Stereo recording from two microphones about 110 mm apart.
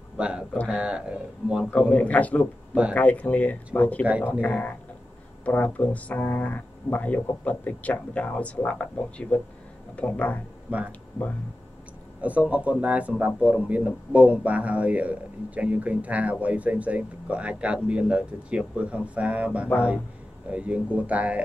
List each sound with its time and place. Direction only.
0.2 s a man's voice: 10° right (ahead or behind)
1.7 s speech: 10° left (ahead or behind)
10.7 s a man's voice: 10° right (ahead or behind)
12.2 s a man's voice: 10° right (ahead or behind)